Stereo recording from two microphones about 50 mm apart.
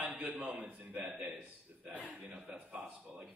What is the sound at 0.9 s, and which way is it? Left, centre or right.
A man's voice, right.